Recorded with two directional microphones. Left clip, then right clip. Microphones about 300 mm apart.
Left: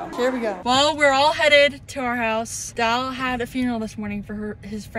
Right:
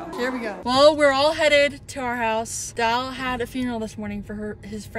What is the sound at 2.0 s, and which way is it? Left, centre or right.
Speech, left.